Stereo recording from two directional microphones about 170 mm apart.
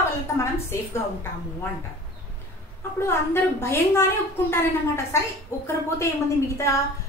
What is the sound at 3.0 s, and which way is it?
A woman's voice, 15° left (ahead or behind).